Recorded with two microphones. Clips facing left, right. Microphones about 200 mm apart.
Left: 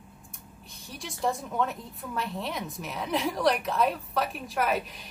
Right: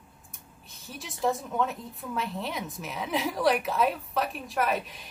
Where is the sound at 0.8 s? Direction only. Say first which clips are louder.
Right 1 dB; centre (ahead or behind).